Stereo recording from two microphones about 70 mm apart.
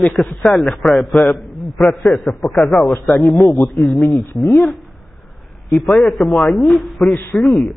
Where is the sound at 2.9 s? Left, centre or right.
Left.